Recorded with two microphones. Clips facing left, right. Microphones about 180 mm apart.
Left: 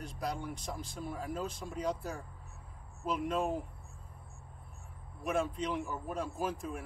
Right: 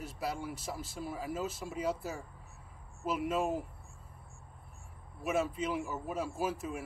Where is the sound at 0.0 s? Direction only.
5° right (ahead or behind).